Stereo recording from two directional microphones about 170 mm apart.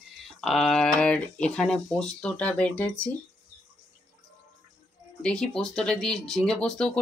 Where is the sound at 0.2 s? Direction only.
Centre (ahead or behind).